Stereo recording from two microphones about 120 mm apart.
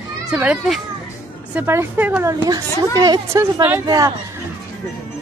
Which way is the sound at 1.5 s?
15° right (ahead or behind).